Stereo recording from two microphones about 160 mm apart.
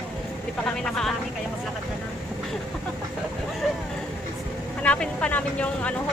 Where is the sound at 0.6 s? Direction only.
5° left (ahead or behind).